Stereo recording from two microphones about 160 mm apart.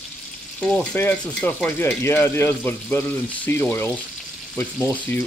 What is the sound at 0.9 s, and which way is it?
Speech, 10° left (ahead or behind).